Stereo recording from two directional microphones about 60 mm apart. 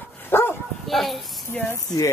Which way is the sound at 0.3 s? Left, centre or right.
Left.